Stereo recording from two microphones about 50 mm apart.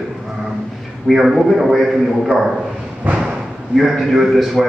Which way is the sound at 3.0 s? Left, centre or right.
Right.